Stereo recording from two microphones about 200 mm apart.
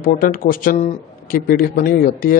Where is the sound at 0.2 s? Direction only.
45° left (ahead or behind).